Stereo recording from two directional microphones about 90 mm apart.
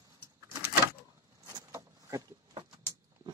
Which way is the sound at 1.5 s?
35° right (ahead or behind).